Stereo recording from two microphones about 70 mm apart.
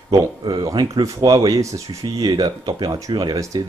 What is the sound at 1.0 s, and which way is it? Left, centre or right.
Speech, right.